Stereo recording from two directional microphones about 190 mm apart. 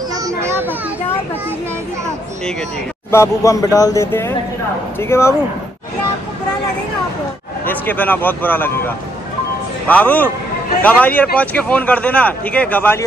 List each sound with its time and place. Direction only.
0.1 s children playing: 15° right (ahead or behind)
3.1 s speech: 15° left (ahead or behind)
7.6 s speech: 10° left (ahead or behind)